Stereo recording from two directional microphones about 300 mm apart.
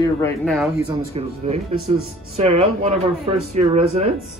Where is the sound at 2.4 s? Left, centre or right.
Right.